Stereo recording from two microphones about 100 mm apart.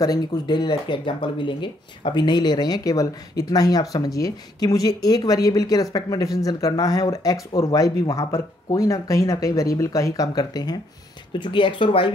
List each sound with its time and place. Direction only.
0.0 s speech: 40° left (ahead or behind)
11.3 s speech: 55° left (ahead or behind)